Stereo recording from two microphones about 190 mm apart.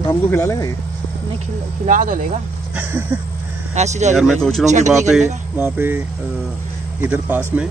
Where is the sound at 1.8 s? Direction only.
45° right (ahead or behind).